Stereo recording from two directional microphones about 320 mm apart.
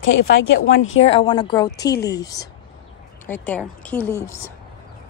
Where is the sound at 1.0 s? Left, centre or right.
Centre.